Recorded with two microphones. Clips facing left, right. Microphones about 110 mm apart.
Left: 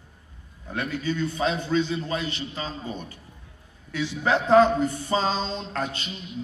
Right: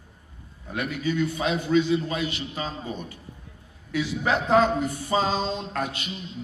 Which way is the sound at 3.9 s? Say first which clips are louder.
Even; 30° left (ahead or behind).